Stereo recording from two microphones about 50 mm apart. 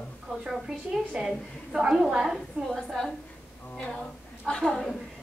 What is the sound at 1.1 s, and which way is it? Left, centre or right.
Speech, right.